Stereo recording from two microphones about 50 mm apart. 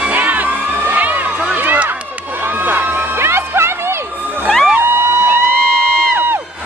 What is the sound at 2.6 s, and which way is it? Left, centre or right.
Music, right.